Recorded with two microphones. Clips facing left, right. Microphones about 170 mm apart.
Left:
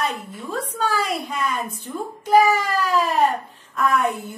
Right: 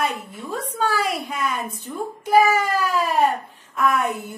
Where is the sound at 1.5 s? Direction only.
50° right (ahead or behind).